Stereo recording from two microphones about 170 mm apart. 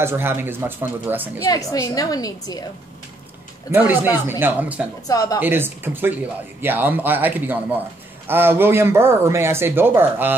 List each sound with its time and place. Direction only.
0.0 s speech: 15° right (ahead or behind)
1.4 s a woman's voice: 20° left (ahead or behind)
3.7 s speech: 10° right (ahead or behind)
5.0 s a woman's voice: 20° left (ahead or behind)
5.4 s speech: 10° right (ahead or behind)